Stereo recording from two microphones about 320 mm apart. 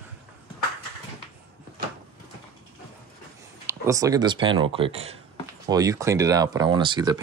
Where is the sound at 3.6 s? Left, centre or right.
Centre.